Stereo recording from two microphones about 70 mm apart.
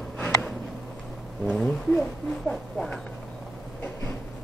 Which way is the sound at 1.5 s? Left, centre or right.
Centre.